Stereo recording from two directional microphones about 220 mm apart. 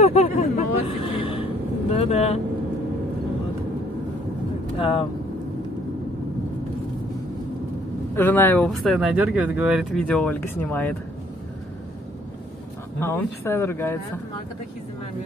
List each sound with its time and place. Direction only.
0.0 s a sound: 30° left (ahead or behind)
1.9 s speech: 30° left (ahead or behind)
4.7 s speech: 25° left (ahead or behind)
8.2 s speech: 10° left (ahead or behind)
13.0 s speech: 10° left (ahead or behind)